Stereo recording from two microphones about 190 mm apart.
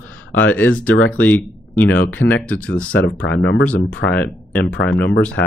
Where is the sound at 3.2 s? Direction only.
75° left (ahead or behind).